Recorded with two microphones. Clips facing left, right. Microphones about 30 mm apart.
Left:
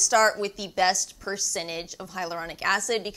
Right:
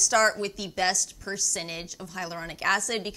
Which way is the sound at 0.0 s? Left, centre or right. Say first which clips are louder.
Left 2 dB; centre.